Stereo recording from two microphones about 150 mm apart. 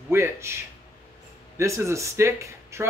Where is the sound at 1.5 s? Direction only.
20° right (ahead or behind).